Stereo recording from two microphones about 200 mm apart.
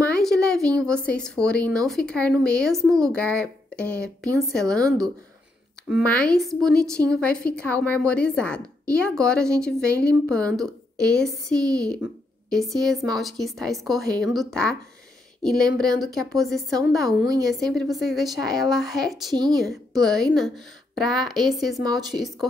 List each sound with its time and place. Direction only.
0.0 s speech: 5° left (ahead or behind)
6.0 s a woman's voice: 5° left (ahead or behind)
17.3 s a woman's voice: 15° right (ahead or behind)
17.6 s speech: 5° left (ahead or behind)
19.3 s speech: 20° right (ahead or behind)
20.0 s speech: 5° left (ahead or behind)
21.8 s speech: 20° right (ahead or behind)